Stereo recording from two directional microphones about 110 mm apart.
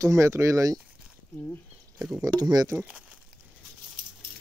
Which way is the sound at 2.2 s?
35° right (ahead or behind).